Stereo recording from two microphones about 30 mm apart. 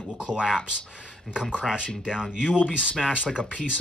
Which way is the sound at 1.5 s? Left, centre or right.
Right.